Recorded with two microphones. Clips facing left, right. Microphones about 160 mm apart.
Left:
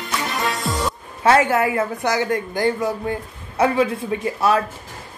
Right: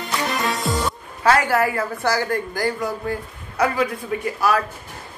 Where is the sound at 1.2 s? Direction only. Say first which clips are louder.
Left 2 dB; 25° left (ahead or behind).